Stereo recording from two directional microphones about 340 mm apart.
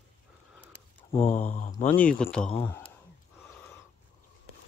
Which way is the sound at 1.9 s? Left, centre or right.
Centre.